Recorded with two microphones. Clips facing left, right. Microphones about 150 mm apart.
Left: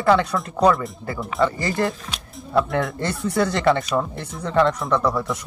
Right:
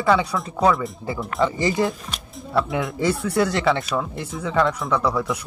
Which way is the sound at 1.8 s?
Centre (ahead or behind).